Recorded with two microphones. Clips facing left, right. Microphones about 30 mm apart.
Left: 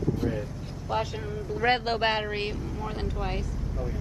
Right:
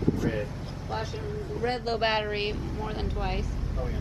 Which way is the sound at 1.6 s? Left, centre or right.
Left.